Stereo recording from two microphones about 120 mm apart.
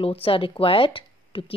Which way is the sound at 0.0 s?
50° left (ahead or behind).